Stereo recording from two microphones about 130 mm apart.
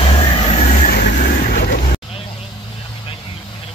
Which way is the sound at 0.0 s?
45° left (ahead or behind).